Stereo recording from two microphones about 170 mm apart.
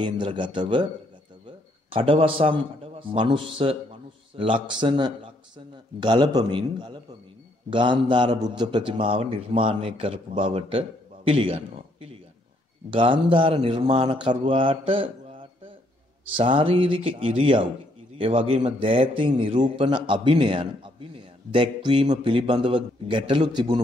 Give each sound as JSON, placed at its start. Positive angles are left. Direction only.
{"t": 0.0, "sound": "a man's voice", "side_deg": -30}
{"t": 1.9, "sound": "a man's voice", "side_deg": -35}